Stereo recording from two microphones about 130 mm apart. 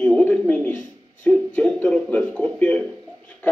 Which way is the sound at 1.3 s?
10° left (ahead or behind).